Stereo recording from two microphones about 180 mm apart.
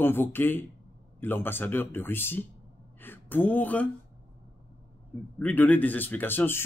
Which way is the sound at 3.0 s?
10° left (ahead or behind).